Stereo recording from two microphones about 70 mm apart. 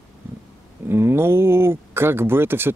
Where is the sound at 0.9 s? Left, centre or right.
Right.